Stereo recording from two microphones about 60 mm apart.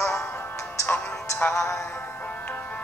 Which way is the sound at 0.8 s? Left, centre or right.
Left.